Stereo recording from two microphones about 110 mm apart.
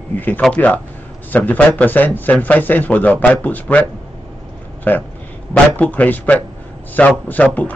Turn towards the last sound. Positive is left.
turn(degrees=15)  # may be behind; listen again after turning